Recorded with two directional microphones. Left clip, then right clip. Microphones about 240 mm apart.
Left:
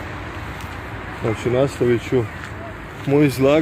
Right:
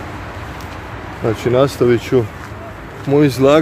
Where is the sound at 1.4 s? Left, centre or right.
Centre.